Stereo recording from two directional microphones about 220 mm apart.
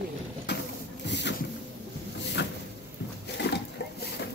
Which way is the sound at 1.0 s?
50° left (ahead or behind).